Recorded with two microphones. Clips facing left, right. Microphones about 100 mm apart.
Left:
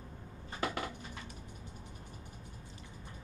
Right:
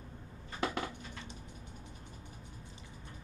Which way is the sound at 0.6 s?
25° right (ahead or behind).